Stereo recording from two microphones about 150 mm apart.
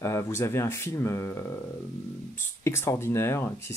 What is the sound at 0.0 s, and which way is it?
Speech, 15° left (ahead or behind).